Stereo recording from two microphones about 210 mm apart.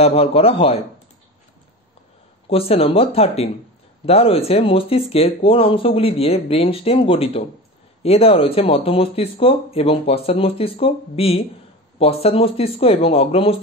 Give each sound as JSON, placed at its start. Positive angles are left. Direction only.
{"t": 0.0, "sound": "speech", "side_deg": 30}
{"t": 2.5, "sound": "speech", "side_deg": 25}